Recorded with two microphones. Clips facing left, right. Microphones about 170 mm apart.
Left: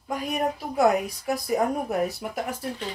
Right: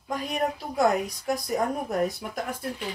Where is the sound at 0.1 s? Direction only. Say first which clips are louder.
Left 1 dB; 10° left (ahead or behind).